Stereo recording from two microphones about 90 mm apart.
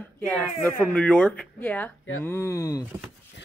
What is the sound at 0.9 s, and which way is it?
Speech, 10° left (ahead or behind).